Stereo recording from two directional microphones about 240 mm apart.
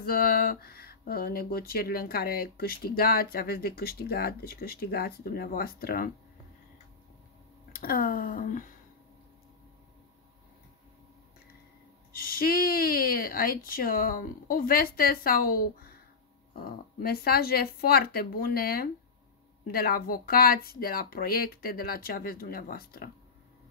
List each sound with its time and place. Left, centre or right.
0.0 s speech: left
7.7 s speech: left
12.1 s speech: left